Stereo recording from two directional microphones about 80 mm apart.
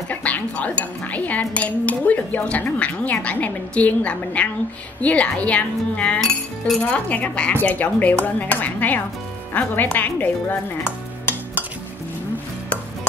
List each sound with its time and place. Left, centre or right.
0.1 s speech: centre